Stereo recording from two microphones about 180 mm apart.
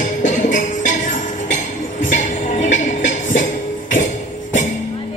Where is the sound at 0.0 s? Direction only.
45° left (ahead or behind).